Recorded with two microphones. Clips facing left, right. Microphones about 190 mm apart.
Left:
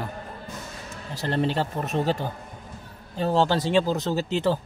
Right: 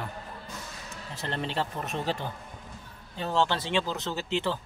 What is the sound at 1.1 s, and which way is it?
Speech, 35° left (ahead or behind).